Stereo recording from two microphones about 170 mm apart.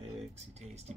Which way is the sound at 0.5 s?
40° right (ahead or behind).